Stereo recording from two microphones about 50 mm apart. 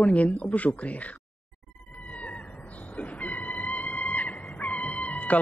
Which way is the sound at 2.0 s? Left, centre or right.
Left.